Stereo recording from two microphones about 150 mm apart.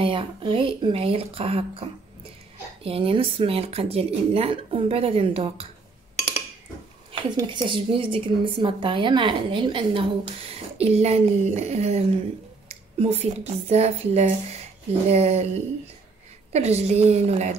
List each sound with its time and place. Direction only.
0.0 s a woman's voice: 35° right (ahead or behind)
7.4 s a woman's voice: 35° right (ahead or behind)
16.5 s speech: 45° right (ahead or behind)